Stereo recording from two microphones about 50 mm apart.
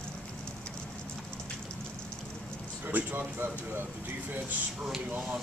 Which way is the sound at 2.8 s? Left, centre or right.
Right.